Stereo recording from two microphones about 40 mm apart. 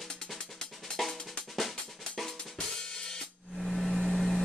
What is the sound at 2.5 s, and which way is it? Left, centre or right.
Drum kit, centre.